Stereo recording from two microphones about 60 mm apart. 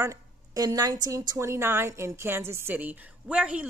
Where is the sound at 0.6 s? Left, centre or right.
Right.